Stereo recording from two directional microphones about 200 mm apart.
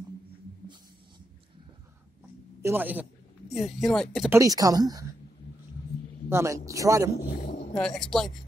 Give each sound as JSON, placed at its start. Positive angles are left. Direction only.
{"t": 2.6, "sound": "speech", "side_deg": -10}
{"t": 4.3, "sound": "speech", "side_deg": -15}
{"t": 6.2, "sound": "speech", "side_deg": -15}
{"t": 7.2, "sound": "a sound", "side_deg": 35}
{"t": 7.7, "sound": "speech", "side_deg": 5}